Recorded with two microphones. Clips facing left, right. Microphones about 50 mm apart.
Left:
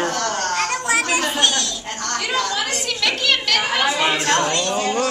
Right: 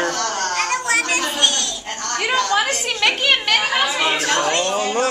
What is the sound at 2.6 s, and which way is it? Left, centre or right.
A woman's voice, right.